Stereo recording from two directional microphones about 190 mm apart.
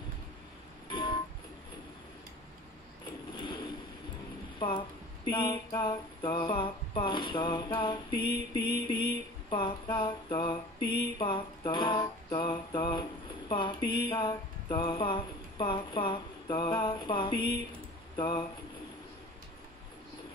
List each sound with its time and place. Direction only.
0.8 s music: 25° left (ahead or behind)
4.6 s a sound: 25° left (ahead or behind)
18.1 s speech: 25° left (ahead or behind)